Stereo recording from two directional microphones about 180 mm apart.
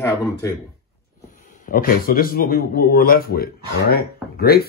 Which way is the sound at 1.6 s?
50° left (ahead or behind).